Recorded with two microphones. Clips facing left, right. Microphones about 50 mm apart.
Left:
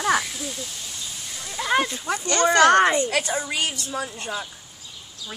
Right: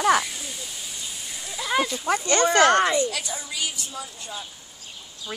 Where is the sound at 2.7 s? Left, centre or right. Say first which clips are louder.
Left 3 dB; left.